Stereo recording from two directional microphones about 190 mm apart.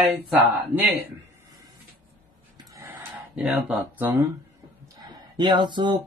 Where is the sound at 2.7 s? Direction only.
5° right (ahead or behind).